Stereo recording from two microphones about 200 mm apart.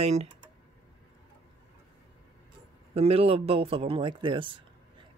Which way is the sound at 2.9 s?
30° right (ahead or behind).